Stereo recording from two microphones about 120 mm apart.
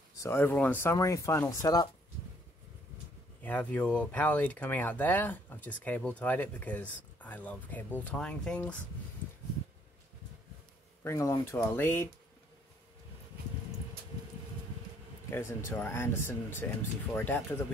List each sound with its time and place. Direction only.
0.2 s speech: 20° left (ahead or behind)
3.4 s speech: 15° left (ahead or behind)
11.1 s speech: 25° left (ahead or behind)
15.2 s speech: 20° left (ahead or behind)